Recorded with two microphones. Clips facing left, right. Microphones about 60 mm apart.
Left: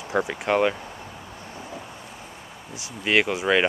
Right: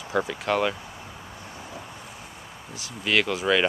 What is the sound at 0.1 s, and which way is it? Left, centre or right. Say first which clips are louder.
Speech: left 2 dB; left.